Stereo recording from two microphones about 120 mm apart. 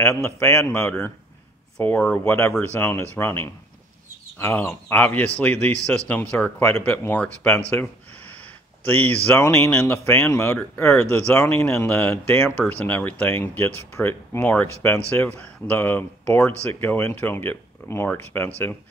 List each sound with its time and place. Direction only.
0.0 s speech: 20° left (ahead or behind)
2.1 s speech: 20° left (ahead or behind)